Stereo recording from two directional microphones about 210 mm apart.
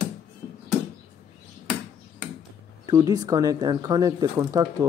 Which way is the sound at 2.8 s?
20° right (ahead or behind).